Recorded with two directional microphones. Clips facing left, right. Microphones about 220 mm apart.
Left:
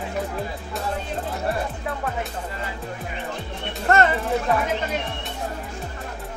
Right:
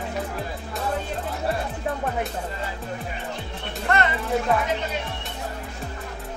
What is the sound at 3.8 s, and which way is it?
Music, 45° left (ahead or behind).